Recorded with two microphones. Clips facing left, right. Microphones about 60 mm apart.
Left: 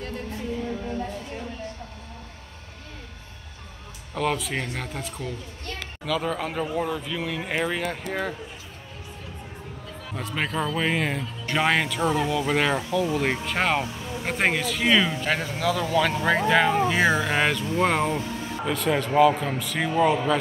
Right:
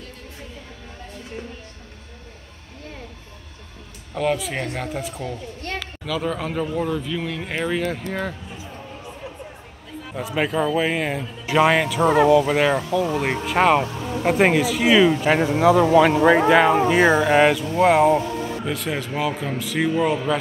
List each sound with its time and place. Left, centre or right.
4.1 s speech: centre
10.1 s speech: centre
15.3 s speech: right
16.3 s speech: centre
18.2 s music: right
18.6 s speech: centre